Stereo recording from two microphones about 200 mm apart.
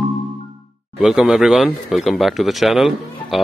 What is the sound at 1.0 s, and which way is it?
Speech, centre (ahead or behind).